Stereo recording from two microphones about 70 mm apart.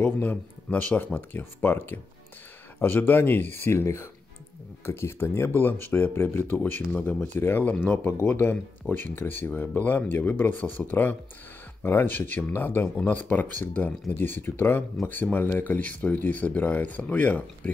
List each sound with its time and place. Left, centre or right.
0.0 s speech: centre
7.3 s speech: left